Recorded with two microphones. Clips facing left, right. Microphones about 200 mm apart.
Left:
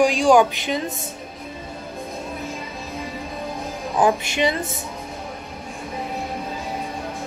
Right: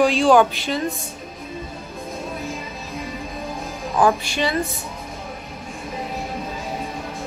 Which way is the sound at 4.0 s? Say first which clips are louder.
Even; 20° left (ahead or behind).